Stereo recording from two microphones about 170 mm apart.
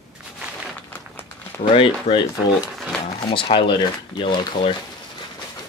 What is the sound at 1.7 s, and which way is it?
Speech, 30° left (ahead or behind).